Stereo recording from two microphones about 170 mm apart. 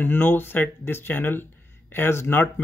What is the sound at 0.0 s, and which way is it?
Speech, 10° left (ahead or behind).